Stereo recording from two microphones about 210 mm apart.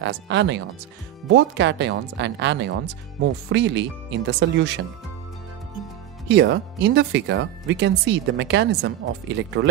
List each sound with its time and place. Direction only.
0.0 s speech: 60° right (ahead or behind)
6.2 s speech: 55° right (ahead or behind)